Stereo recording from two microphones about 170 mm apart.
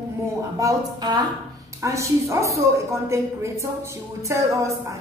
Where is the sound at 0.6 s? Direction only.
20° right (ahead or behind).